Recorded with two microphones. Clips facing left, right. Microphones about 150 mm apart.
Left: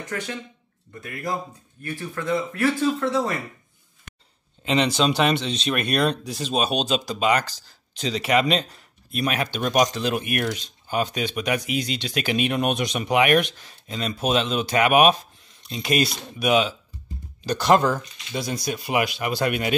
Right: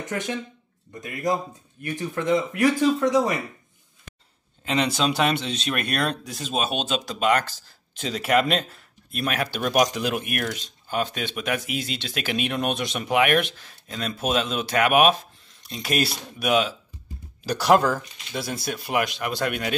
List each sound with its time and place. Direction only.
0.0 s speech: 20° right (ahead or behind)
4.6 s speech: centre (ahead or behind)